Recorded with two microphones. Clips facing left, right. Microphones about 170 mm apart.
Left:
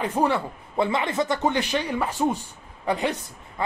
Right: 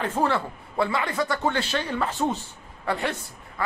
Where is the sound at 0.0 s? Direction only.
15° left (ahead or behind).